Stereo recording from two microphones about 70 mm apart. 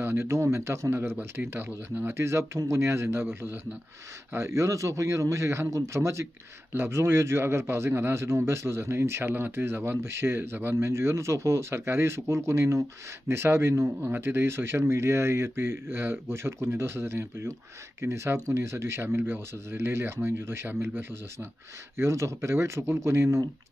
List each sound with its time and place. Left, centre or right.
0.0 s speech: right
1.1 s speech: right
2.1 s speech: right